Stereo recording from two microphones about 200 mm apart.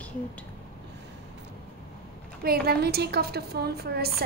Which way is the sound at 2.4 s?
50° right (ahead or behind).